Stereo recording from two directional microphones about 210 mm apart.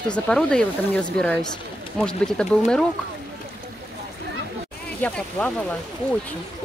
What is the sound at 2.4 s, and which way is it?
Speech, centre (ahead or behind).